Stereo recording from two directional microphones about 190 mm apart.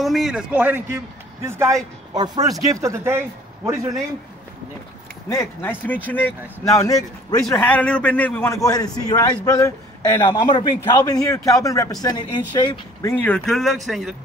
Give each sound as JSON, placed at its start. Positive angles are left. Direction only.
{"t": 0.0, "sound": "a man's voice", "side_deg": 0}
{"t": 5.3, "sound": "a man's voice", "side_deg": 15}
{"t": 13.2, "sound": "speech", "side_deg": 5}